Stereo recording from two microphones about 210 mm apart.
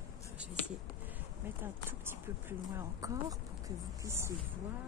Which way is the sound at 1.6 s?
10° right (ahead or behind).